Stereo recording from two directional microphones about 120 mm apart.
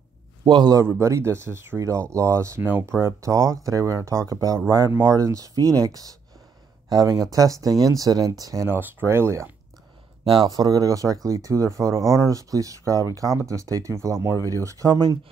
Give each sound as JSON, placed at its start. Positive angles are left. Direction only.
{"t": 0.5, "sound": "a man's voice", "side_deg": -35}
{"t": 0.8, "sound": "speech", "side_deg": -25}